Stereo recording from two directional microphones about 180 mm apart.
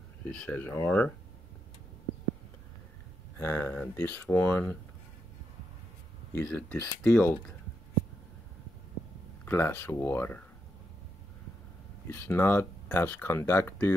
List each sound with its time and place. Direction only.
0.3 s speech: 5° left (ahead or behind)
3.3 s speech: 10° left (ahead or behind)
6.3 s speech: 10° left (ahead or behind)
9.4 s speech: 10° left (ahead or behind)
12.1 s speech: 10° left (ahead or behind)